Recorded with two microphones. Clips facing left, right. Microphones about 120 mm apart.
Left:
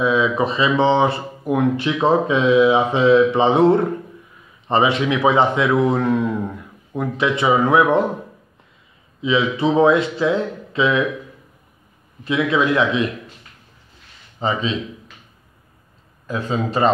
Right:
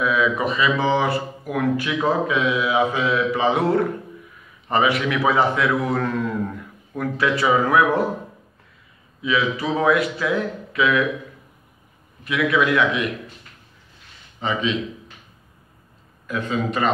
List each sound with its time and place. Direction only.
0.0 s speech: 25° left (ahead or behind)
9.2 s speech: 25° left (ahead or behind)
12.3 s speech: 25° left (ahead or behind)
14.4 s a man's voice: 35° left (ahead or behind)
16.3 s a man's voice: 30° left (ahead or behind)